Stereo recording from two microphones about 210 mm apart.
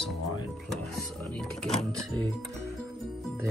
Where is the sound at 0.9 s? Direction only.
5° left (ahead or behind).